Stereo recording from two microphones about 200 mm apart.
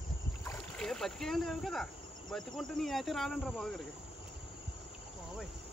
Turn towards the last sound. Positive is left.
turn(degrees=0)  # may be behind; listen again after turning